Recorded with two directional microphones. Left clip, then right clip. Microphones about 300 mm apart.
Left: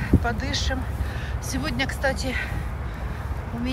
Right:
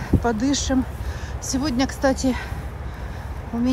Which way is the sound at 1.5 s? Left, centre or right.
Centre.